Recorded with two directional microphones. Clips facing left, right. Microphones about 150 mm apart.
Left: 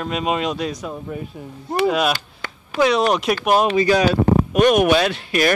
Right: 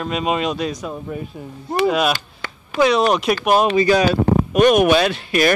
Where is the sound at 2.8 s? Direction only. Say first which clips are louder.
Right 1 dB; 20° right (ahead or behind).